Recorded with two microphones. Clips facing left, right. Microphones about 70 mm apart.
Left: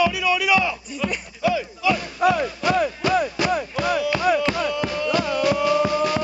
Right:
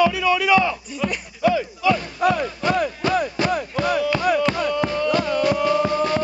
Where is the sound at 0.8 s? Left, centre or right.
Centre.